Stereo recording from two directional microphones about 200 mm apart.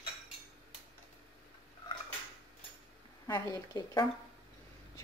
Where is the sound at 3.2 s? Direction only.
20° left (ahead or behind).